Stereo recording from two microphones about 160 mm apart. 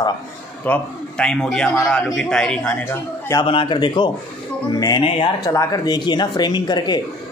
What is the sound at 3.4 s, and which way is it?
A man's voice, 30° left (ahead or behind).